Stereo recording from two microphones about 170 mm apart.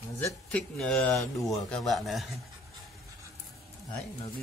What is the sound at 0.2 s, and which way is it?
Speech, 5° left (ahead or behind).